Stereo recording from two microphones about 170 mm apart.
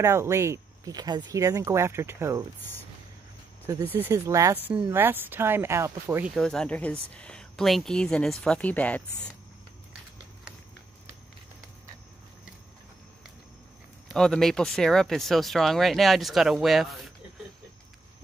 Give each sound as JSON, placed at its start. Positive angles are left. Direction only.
{"t": 0.0, "sound": "speech", "side_deg": -15}
{"t": 3.6, "sound": "speech", "side_deg": -15}
{"t": 6.3, "sound": "speech", "side_deg": 5}
{"t": 14.0, "sound": "speech", "side_deg": 5}